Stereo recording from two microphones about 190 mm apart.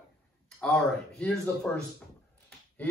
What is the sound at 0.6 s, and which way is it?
A man's voice, 5° left (ahead or behind).